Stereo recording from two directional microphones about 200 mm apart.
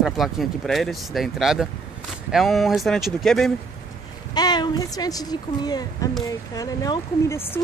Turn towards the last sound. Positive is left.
turn(degrees=15)  # may be behind; listen again after turning